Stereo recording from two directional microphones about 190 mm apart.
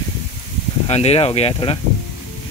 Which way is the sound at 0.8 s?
35° left (ahead or behind).